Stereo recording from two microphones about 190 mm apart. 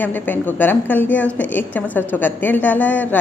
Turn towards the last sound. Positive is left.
turn(degrees=10)  # may be behind; listen again after turning